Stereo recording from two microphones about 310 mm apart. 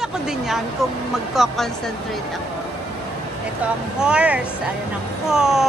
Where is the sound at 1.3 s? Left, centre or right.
Centre.